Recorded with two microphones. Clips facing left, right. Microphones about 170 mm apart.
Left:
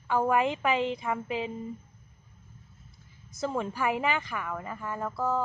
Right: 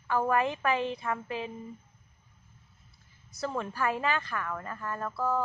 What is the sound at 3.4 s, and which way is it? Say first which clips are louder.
A woman's voice: left 2 dB; 15° left (ahead or behind).